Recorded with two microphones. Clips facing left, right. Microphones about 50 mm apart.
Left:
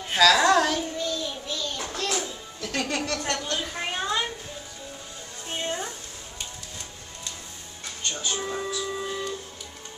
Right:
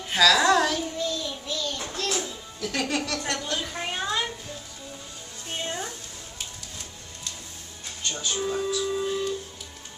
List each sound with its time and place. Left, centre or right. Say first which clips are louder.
0.1 s child singing: left 1 dB; centre
1.9 s music: even; centre
2.2 s music: right 1 dB; centre
3.3 s a sound: left 1 dB; centre
5.5 s a sound: left 1 dB; centre
8.0 s music: even; centre
8.4 s music: right 3 dB; centre